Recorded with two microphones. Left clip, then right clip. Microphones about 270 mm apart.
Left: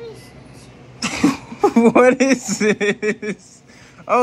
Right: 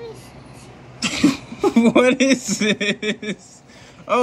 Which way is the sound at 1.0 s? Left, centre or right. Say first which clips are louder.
Even; centre.